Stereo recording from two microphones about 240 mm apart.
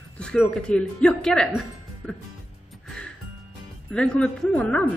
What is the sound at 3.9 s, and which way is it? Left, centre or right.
Speech, centre.